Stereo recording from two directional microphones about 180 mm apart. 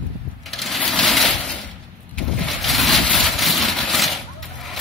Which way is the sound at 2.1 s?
Centre (ahead or behind).